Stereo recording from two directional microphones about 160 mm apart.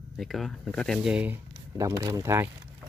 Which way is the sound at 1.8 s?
20° right (ahead or behind).